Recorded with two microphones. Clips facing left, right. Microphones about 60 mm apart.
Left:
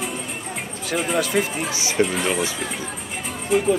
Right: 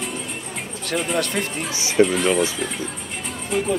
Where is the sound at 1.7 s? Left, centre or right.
Left.